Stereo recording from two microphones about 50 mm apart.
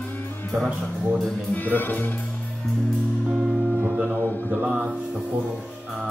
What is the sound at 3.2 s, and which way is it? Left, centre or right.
Music, right.